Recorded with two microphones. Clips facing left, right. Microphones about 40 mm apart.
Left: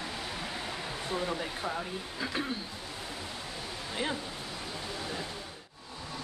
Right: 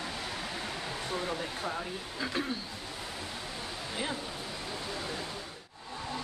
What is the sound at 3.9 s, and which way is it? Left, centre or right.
Speech, centre.